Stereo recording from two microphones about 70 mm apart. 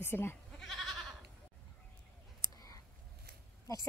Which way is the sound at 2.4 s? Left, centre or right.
Left.